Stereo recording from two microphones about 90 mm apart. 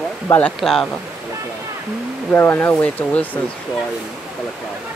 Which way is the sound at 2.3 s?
25° left (ahead or behind).